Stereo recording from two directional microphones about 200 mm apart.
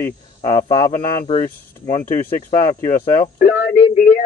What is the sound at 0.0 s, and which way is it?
Speech, 20° left (ahead or behind).